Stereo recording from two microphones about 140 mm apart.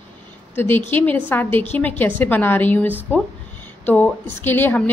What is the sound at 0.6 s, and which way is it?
A woman's voice, 15° left (ahead or behind).